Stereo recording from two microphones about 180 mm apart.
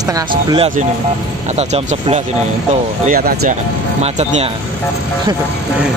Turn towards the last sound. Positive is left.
turn(degrees=-35)  # may be behind; listen again after turning